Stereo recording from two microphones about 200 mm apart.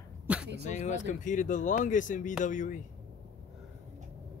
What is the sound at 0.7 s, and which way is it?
Speech, 35° left (ahead or behind).